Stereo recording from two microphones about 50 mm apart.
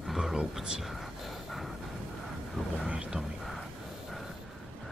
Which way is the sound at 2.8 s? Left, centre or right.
Right.